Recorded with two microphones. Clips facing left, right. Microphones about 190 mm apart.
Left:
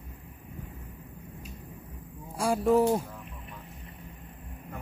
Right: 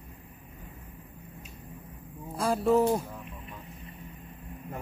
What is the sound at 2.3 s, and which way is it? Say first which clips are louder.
Speech: left 1 dB; 10° left (ahead or behind).